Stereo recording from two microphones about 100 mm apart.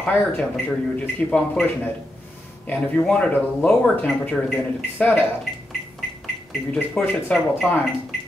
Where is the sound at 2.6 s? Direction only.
15° left (ahead or behind).